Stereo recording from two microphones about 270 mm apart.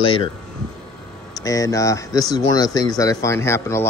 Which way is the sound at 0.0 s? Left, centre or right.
Centre.